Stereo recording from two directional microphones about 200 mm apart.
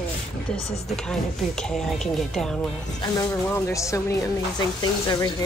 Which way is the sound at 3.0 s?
20° left (ahead or behind).